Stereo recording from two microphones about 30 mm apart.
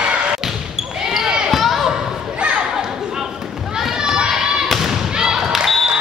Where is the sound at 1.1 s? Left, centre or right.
Right.